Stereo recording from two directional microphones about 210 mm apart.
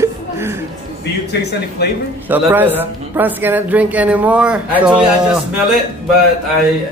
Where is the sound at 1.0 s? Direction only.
55° left (ahead or behind).